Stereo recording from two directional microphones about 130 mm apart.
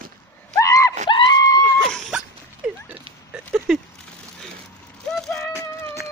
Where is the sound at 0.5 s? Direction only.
25° left (ahead or behind).